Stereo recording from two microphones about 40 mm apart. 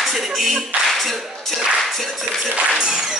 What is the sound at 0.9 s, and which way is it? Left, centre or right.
Speech, centre.